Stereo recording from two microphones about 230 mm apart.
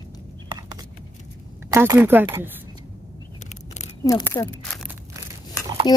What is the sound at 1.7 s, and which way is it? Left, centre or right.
Speech, centre.